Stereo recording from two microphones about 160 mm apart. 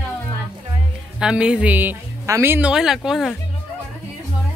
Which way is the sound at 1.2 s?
5° right (ahead or behind).